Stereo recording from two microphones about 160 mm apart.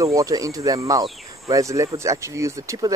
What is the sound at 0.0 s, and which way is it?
Speech, 20° right (ahead or behind).